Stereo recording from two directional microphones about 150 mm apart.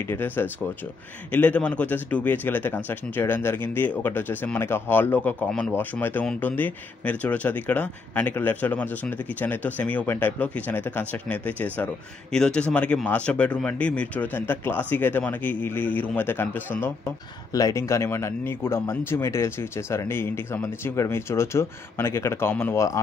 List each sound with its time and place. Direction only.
0.1 s speech: 15° left (ahead or behind)